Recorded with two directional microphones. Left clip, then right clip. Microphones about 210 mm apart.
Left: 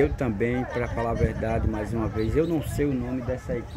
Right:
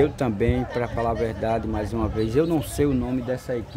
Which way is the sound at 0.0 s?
10° right (ahead or behind).